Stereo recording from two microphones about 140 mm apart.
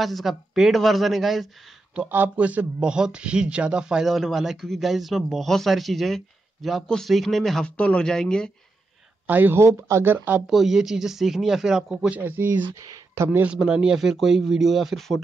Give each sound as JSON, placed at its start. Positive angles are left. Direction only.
{"t": 0.0, "sound": "a man's voice", "side_deg": 0}
{"t": 2.0, "sound": "a man's voice", "side_deg": -15}
{"t": 9.3, "sound": "speech", "side_deg": -15}
{"t": 10.4, "sound": "a man's voice", "side_deg": 0}